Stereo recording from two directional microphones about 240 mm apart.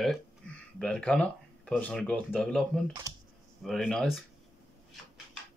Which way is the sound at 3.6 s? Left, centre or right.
Centre.